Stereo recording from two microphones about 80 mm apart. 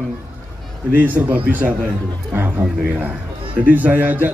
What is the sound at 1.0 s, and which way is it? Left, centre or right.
A man's voice, centre.